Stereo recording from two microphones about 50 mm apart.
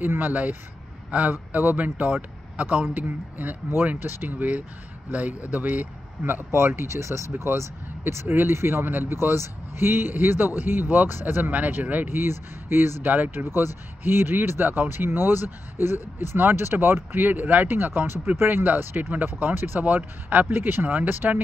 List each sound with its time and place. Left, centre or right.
0.2 s a man's voice: right
6.5 s speech: right
7.0 s speech: right
8.3 s speech: right
11.7 s speech: right
12.1 s speech: right
13.4 s speech: right